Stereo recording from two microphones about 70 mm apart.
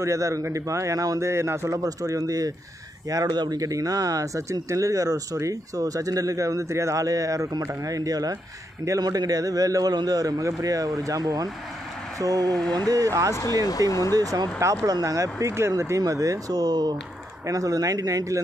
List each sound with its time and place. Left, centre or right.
0.0 s a man's voice: right
1.8 s speech: right
13.3 s speech: left
14.1 s speech: right
16.0 s speech: right
17.5 s speech: right